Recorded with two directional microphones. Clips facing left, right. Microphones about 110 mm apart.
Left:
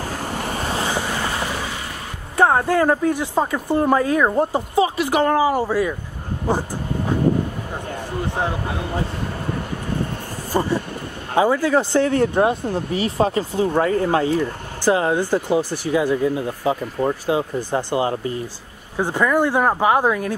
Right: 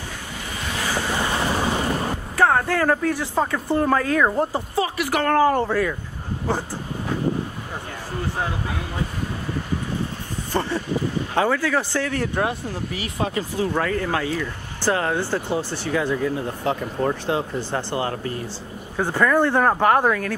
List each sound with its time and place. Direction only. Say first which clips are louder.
0.0 s waves: left 8 dB; 45° left (ahead or behind)
1.6 s vehicle: right 7 dB; 40° right (ahead or behind)
2.3 s speech: left 3 dB; 20° left (ahead or behind)
10.5 s speech: left 2 dB; 10° left (ahead or behind); by 14.5 s 35° left (ahead or behind)
14.9 s speech: left 4 dB; 15° left (ahead or behind)